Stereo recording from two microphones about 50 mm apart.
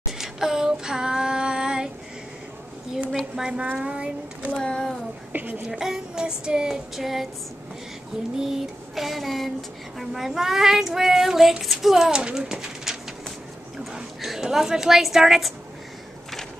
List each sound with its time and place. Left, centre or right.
0.2 s female singing: centre
3.1 s a woman's voice: centre
3.8 s speech: right
4.6 s speech: centre
5.3 s a woman's voice: right
5.7 s child singing: centre
8.4 s child singing: centre
12.4 s speech: centre
13.9 s a woman's voice: centre